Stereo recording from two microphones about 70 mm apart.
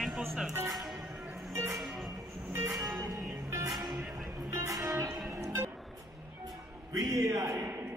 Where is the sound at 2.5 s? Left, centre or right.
Right.